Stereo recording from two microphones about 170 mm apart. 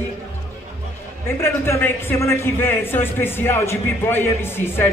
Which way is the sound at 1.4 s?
15° left (ahead or behind).